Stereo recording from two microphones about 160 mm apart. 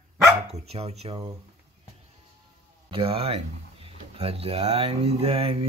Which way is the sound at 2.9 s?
35° right (ahead or behind).